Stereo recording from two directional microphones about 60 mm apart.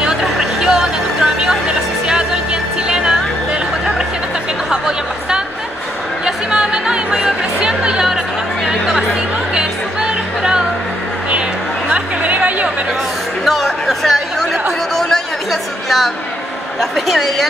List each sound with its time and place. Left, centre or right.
0.0 s music: centre
4.6 s chatter: centre
6.2 s music: centre
11.9 s chatter: right
13.5 s chatter: centre
15.0 s a sound: centre